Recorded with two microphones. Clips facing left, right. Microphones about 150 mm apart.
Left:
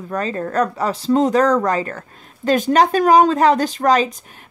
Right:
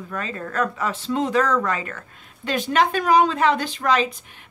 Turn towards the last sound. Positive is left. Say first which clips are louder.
# left 5 dB
turn(degrees=40)  # may be behind; listen again after turning